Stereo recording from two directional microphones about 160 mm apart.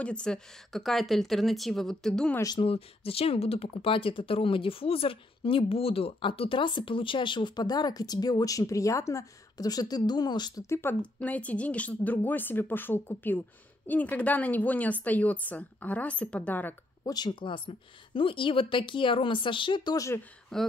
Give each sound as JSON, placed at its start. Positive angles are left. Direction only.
{"t": 0.0, "sound": "a woman's voice", "side_deg": 5}
{"t": 2.6, "sound": "a woman's voice", "side_deg": 35}
{"t": 17.0, "sound": "speech", "side_deg": 25}
{"t": 20.5, "sound": "a woman's voice", "side_deg": 5}